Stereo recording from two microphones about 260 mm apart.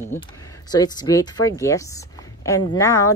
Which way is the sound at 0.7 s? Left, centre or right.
Centre.